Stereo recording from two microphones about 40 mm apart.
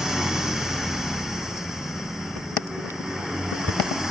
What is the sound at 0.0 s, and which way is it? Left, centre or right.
Vehicle, centre.